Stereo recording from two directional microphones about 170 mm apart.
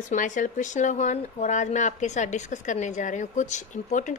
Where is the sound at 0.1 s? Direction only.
50° left (ahead or behind).